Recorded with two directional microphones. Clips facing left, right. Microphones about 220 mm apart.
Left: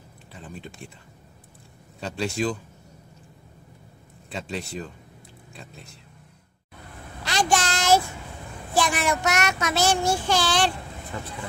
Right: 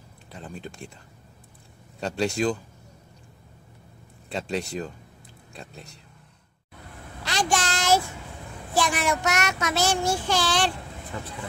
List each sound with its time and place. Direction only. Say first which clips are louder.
0.3 s a sound: right 2 dB; 5° left (ahead or behind)
2.0 s speech: right 2 dB; centre (ahead or behind)
4.3 s speech: right 3 dB; centre (ahead or behind)
7.2 s child singing: left 2 dB; 15° left (ahead or behind)